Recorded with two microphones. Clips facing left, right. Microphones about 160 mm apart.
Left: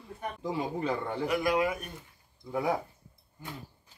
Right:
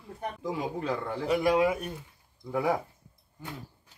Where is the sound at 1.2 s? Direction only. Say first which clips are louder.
Right 4 dB; 25° right (ahead or behind).